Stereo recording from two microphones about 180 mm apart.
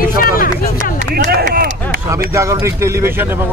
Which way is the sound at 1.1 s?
60° right (ahead or behind).